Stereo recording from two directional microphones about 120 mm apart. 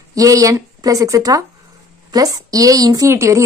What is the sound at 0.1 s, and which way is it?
Speech, 30° right (ahead or behind).